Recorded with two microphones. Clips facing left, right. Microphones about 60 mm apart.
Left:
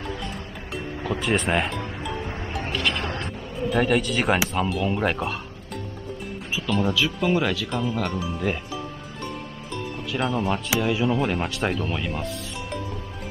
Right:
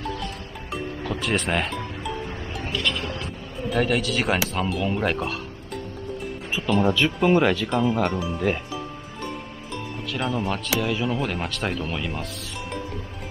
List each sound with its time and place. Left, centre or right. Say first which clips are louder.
0.7 s music: left 1 dB; centre
2.6 s a sound: even; left
3.5 s speech: left 1 dB; centre
6.6 s speech: right 3 dB; centre